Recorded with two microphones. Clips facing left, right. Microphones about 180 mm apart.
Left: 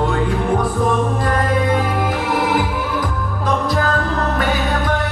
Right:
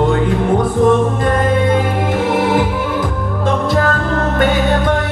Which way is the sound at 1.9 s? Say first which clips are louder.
Right 4 dB; 25° right (ahead or behind).